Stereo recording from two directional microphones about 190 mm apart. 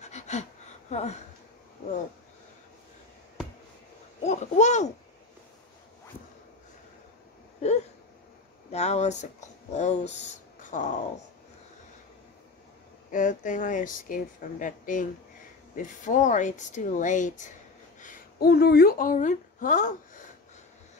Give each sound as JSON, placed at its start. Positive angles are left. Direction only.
{"t": 0.0, "sound": "a sound", "side_deg": 35}
{"t": 4.2, "sound": "speech", "side_deg": 40}
{"t": 8.7, "sound": "speech", "side_deg": 35}
{"t": 13.1, "sound": "a woman's voice", "side_deg": 40}